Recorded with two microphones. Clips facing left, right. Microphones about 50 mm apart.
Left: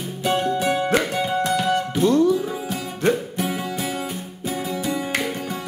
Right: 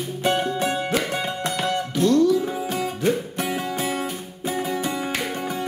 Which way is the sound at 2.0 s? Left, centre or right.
Left.